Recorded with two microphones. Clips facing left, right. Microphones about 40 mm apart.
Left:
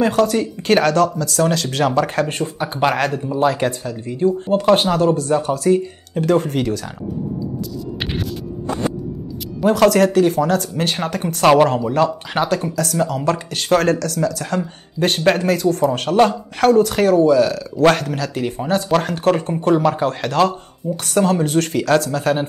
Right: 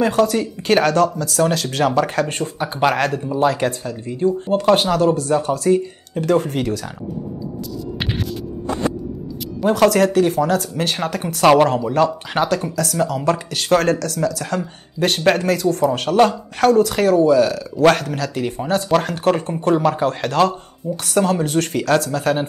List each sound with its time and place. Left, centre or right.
0.0 s speech: centre
9.6 s speech: centre
18.9 s speech: centre